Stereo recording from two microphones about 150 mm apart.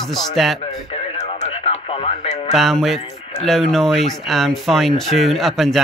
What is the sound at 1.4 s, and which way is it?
Speech, 45° left (ahead or behind).